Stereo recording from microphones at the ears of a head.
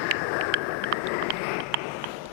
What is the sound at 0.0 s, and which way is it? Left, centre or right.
Vehicle, left.